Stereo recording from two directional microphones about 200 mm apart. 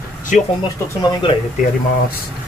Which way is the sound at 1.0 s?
20° left (ahead or behind).